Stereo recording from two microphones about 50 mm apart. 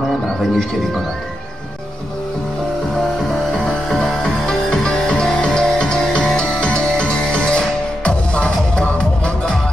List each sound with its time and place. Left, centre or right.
0.4 s speech: centre
3.2 s music: centre
4.2 s music: centre